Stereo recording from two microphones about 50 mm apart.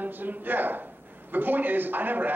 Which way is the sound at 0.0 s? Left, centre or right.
Right.